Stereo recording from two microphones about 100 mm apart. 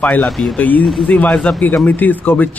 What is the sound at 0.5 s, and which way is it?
A man's voice, 15° left (ahead or behind).